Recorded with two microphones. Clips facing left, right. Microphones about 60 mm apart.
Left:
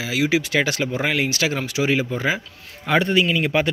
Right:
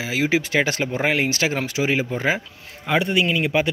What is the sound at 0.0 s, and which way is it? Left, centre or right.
Speech, right.